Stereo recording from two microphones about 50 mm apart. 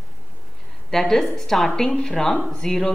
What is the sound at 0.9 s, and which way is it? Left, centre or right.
A woman's voice, centre.